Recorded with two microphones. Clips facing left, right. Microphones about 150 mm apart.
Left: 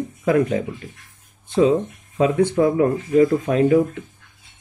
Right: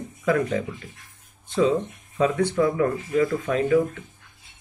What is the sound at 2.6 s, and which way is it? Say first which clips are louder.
Speech: left 3 dB; 35° left (ahead or behind).